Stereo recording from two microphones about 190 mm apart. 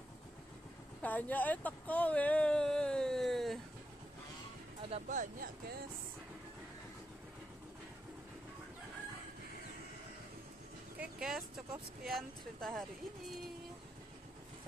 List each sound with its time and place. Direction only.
1.0 s speech: 10° left (ahead or behind)
4.8 s speech: 35° right (ahead or behind)
11.0 s speech: 5° right (ahead or behind)